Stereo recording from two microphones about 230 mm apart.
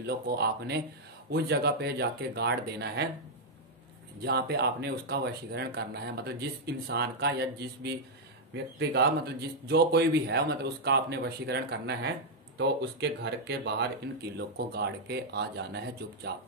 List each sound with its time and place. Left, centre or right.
0.0 s speech: right
4.2 s speech: right